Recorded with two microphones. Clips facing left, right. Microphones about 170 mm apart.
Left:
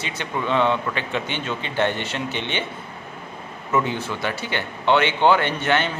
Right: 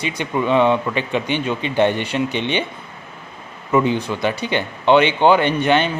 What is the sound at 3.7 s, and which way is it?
Speech, 15° right (ahead or behind).